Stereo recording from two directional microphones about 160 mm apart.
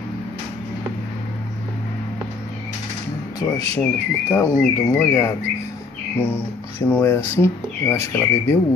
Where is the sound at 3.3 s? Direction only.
25° left (ahead or behind).